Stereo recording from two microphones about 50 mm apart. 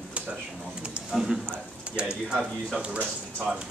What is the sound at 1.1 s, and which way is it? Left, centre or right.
Speech, centre.